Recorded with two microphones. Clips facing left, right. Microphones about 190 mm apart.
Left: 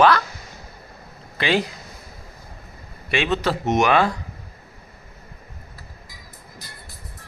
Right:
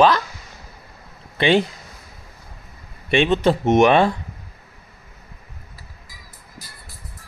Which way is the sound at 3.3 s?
25° right (ahead or behind).